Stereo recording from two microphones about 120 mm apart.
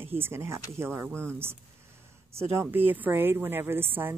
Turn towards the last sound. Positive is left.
turn(degrees=-15)  # may be behind; listen again after turning